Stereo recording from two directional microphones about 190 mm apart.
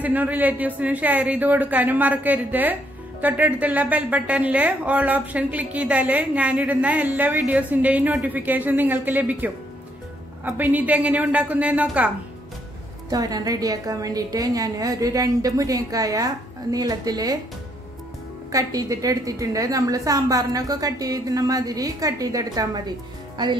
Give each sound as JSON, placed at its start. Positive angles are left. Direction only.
{"t": 0.0, "sound": "a man's voice", "side_deg": -10}
{"t": 13.1, "sound": "a woman's voice", "side_deg": -20}
{"t": 18.5, "sound": "a woman's voice", "side_deg": -20}